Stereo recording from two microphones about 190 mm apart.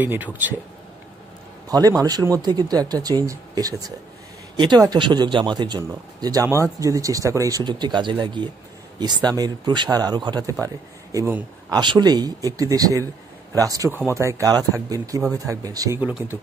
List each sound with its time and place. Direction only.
0.0 s speech: 10° right (ahead or behind)
1.7 s speech: 20° right (ahead or behind)